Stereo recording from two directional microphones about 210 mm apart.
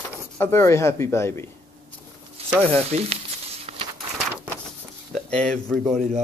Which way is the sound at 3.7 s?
30° right (ahead or behind).